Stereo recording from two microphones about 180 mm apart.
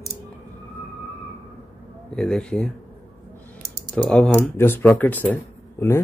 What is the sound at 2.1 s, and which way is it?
Speech, 5° left (ahead or behind).